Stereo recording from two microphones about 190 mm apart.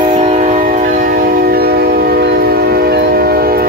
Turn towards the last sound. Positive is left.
turn(degrees=-55)  # may be behind; listen again after turning